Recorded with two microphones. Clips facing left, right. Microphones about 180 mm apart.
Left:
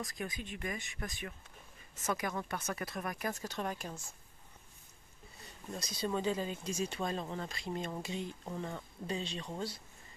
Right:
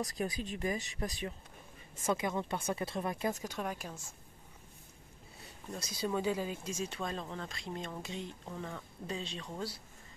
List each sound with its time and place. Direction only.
0.0 s speech: 35° right (ahead or behind); by 3.9 s 5° right (ahead or behind)
5.7 s speech: 10° right (ahead or behind)